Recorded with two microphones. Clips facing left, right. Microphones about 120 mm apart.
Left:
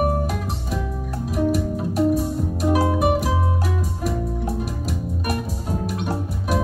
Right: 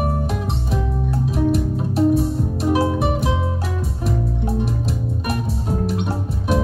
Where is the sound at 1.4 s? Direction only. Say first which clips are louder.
Right 2 dB; 30° right (ahead or behind).